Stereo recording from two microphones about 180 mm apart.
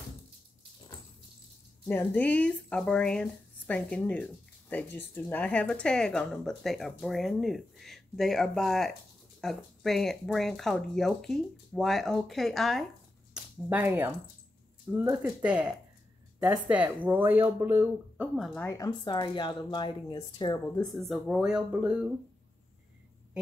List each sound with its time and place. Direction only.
1.9 s speech: 10° left (ahead or behind)
18.8 s speech: 25° left (ahead or behind)
20.8 s speech: centre (ahead or behind)